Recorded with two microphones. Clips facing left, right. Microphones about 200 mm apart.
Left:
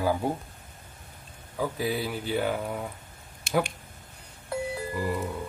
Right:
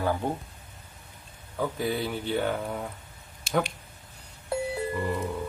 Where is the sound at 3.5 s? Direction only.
55° left (ahead or behind).